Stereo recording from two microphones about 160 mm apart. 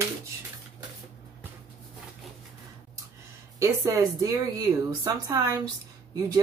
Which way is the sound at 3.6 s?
20° right (ahead or behind).